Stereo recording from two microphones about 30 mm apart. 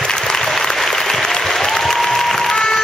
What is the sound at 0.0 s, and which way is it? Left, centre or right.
Applause, left.